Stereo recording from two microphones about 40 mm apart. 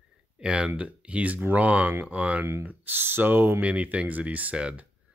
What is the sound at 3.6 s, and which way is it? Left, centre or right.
Speech, right.